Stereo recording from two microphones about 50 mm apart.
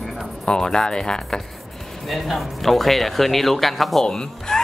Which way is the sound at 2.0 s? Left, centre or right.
Centre.